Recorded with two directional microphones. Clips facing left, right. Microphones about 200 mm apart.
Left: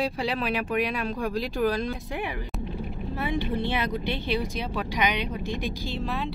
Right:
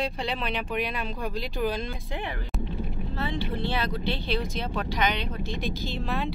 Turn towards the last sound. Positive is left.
turn(degrees=5)  # may be behind; listen again after turning